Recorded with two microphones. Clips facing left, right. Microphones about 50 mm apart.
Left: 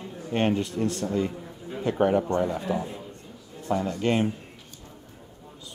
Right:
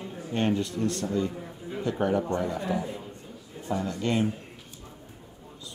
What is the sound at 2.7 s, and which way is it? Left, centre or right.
Speech, centre.